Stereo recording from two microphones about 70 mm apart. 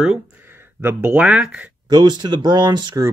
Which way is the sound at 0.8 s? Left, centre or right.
Right.